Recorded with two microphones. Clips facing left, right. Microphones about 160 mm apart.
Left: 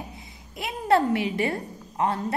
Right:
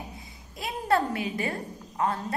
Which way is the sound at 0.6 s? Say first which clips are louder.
Left 4 dB; 25° left (ahead or behind).